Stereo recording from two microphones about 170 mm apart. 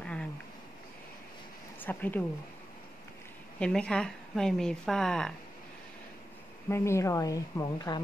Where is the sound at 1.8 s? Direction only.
10° left (ahead or behind).